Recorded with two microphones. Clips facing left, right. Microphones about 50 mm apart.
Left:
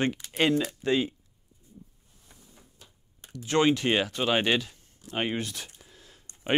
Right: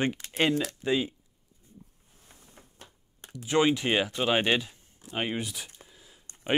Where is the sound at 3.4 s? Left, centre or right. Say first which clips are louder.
Left 1 dB; centre.